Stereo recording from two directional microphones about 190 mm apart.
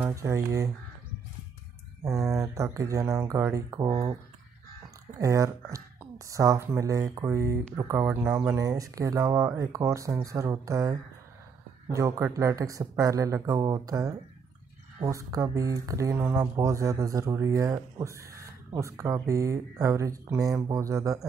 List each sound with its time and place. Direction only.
0.0 s speech: 15° right (ahead or behind)
2.0 s speech: centre (ahead or behind)
2.4 s speech: 15° right (ahead or behind)
5.2 s speech: 15° right (ahead or behind)